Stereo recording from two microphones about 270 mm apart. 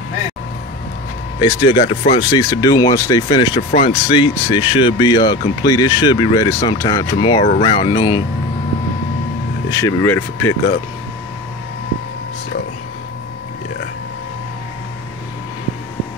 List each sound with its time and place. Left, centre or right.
1.4 s speech: centre
9.7 s speech: centre